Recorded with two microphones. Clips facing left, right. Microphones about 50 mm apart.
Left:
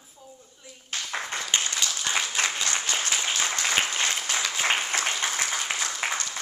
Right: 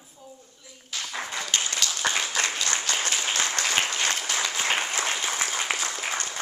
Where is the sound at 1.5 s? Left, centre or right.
Left.